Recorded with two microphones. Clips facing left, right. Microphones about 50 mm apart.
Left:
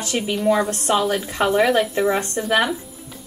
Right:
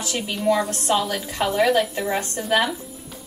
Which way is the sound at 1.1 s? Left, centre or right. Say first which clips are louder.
Left 4 dB; centre.